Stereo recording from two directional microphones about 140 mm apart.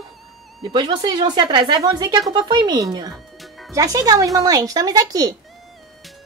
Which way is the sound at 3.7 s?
25° right (ahead or behind).